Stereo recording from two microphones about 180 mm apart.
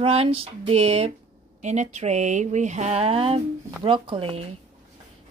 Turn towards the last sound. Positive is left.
turn(degrees=-30)  # may be behind; listen again after turning